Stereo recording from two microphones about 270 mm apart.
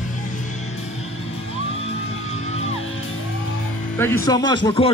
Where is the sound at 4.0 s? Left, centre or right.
Centre.